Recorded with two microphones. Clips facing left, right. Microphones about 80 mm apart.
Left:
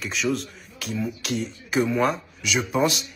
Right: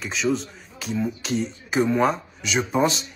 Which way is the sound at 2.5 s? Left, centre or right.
Right.